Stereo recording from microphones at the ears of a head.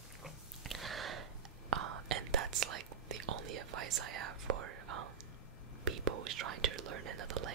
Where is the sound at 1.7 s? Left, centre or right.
Right.